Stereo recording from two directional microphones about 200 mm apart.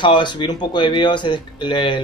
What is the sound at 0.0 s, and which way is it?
Speech, 25° left (ahead or behind).